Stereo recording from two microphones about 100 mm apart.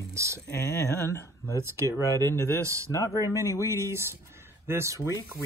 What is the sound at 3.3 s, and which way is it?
Speech, 25° right (ahead or behind).